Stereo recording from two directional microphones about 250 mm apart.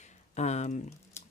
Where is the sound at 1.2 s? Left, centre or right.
Centre.